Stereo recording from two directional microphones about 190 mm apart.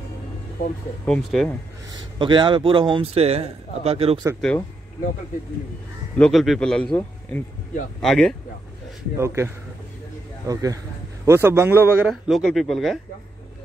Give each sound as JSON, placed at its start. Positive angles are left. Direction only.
{"t": 1.0, "sound": "a man's voice", "side_deg": 5}
{"t": 2.1, "sound": "speech", "side_deg": -25}
{"t": 4.4, "sound": "a man's voice", "side_deg": 5}
{"t": 6.1, "sound": "a man's voice", "side_deg": 5}
{"t": 9.2, "sound": "a man's voice", "side_deg": -15}